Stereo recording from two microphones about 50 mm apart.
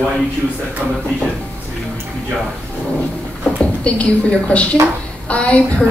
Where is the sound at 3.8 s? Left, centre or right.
Left.